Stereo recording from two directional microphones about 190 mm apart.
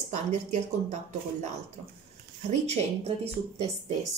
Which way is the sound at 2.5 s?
35° right (ahead or behind).